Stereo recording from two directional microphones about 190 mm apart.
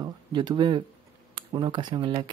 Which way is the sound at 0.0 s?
25° right (ahead or behind).